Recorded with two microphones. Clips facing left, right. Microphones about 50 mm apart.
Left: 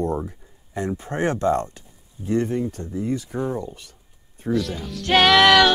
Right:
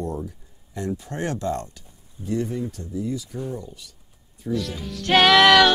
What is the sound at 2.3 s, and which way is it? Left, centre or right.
Speech, left.